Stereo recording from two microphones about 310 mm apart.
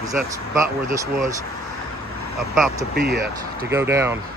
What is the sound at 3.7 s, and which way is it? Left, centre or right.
Speech, centre.